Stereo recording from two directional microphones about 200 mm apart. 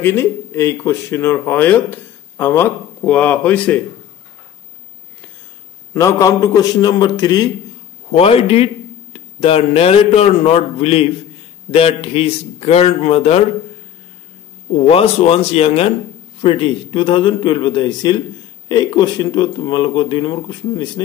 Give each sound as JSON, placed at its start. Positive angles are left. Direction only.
{"t": 0.0, "sound": "speech", "side_deg": 10}
{"t": 5.9, "sound": "a man's voice", "side_deg": 15}
{"t": 14.9, "sound": "speech", "side_deg": 30}